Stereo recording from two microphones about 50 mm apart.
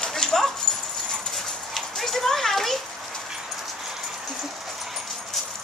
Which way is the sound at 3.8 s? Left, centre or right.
Centre.